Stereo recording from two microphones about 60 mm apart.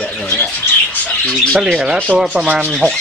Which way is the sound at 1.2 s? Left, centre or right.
Centre.